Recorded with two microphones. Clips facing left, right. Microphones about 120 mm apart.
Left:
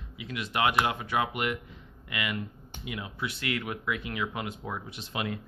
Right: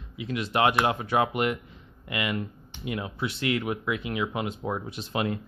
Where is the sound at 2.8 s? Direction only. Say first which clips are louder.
Right 6 dB; 40° right (ahead or behind).